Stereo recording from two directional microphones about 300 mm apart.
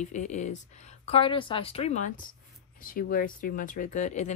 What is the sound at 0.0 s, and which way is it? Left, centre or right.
A woman's voice, left.